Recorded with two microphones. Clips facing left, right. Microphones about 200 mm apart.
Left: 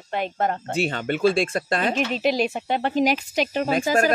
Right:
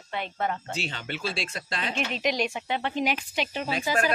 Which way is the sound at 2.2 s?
35° left (ahead or behind).